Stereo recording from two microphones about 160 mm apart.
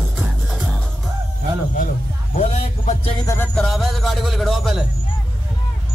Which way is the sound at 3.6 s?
Centre (ahead or behind).